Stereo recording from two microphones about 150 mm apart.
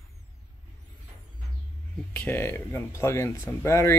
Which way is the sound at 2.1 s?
15° left (ahead or behind).